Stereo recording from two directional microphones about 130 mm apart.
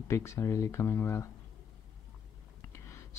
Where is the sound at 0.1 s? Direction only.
20° left (ahead or behind).